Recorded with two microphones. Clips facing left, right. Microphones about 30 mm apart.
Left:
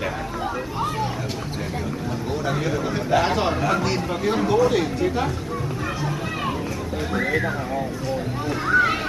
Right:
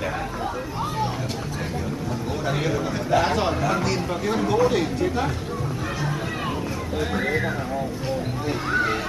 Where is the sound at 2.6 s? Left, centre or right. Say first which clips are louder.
Left 1 dB; centre.